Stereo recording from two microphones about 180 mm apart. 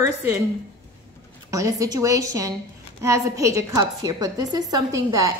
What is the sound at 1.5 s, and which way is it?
A woman's voice, 20° right (ahead or behind).